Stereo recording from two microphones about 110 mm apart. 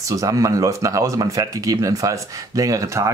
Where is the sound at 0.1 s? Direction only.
30° right (ahead or behind).